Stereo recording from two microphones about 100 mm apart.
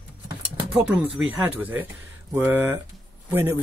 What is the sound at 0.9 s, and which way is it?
Speech, 15° right (ahead or behind).